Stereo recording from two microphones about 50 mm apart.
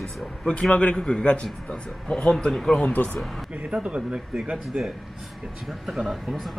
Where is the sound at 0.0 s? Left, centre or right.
Centre.